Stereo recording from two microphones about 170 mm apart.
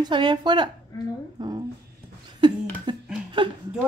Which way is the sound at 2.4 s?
25° right (ahead or behind).